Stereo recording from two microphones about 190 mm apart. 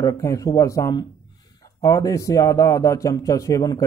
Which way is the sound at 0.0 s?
15° left (ahead or behind).